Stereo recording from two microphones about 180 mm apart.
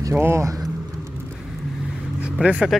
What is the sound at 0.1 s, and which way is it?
Speech, 15° right (ahead or behind).